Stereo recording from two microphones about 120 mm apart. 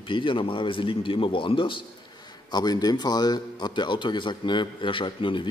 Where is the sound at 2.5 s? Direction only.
35° left (ahead or behind).